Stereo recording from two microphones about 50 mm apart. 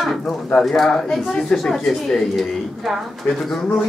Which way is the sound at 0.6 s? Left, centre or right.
Centre.